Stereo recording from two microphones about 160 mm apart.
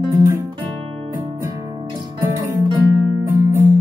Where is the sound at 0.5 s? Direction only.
35° right (ahead or behind).